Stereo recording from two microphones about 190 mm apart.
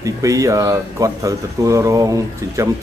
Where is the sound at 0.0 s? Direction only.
20° right (ahead or behind).